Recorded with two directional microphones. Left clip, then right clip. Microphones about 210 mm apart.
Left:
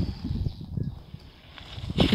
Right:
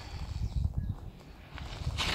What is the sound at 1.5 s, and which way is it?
Vehicle, centre (ahead or behind).